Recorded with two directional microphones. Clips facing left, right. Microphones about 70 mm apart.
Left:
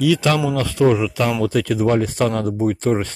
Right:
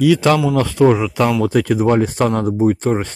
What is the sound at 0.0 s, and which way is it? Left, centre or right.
Speech, right.